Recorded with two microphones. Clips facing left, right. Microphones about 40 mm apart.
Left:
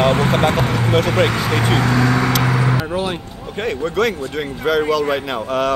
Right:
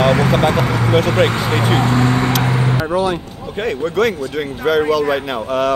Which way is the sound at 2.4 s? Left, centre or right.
Right.